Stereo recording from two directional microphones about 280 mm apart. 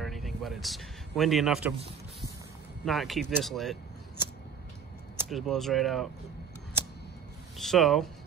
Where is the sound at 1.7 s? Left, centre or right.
Right.